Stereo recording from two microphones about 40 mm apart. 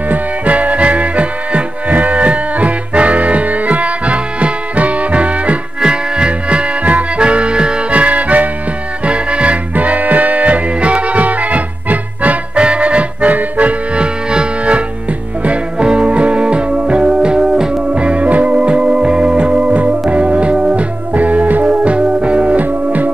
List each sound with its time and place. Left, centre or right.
0.1 s music: right
5.8 s music: right
13.9 s music: right
17.9 s music: right
21.1 s music: right
21.8 s music: right